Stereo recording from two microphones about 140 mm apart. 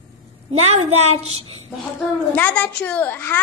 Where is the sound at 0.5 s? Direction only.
50° right (ahead or behind).